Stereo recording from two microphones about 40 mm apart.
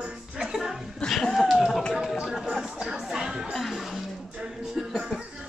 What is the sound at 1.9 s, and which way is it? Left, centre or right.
Chatter, centre.